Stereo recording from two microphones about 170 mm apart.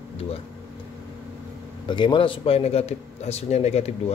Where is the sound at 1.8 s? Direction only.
25° left (ahead or behind).